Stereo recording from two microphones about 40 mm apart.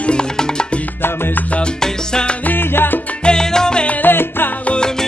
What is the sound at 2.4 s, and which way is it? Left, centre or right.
Salsa music, left.